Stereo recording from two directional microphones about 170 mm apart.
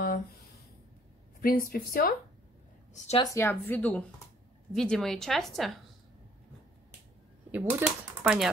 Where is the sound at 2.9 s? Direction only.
40° left (ahead or behind).